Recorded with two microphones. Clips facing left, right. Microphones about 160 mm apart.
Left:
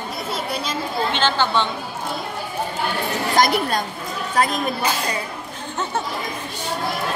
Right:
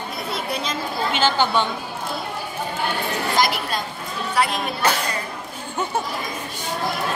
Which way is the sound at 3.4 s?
45° left (ahead or behind).